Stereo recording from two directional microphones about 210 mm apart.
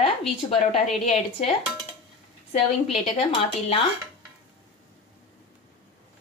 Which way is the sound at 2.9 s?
30° left (ahead or behind).